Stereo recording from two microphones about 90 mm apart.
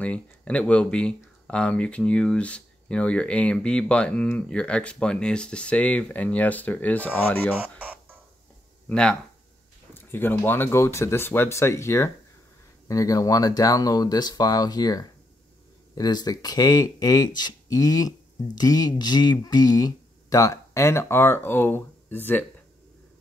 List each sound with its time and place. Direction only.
0.0 s speech: 15° left (ahead or behind)
7.6 s music: 15° right (ahead or behind)
8.8 s speech: 10° left (ahead or behind)
9.9 s speech: 25° left (ahead or behind)